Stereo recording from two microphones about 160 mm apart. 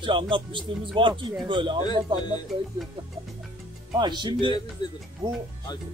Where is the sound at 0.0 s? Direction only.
30° right (ahead or behind).